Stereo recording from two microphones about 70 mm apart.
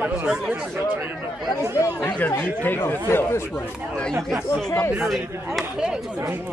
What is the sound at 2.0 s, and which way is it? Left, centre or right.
Speech, left.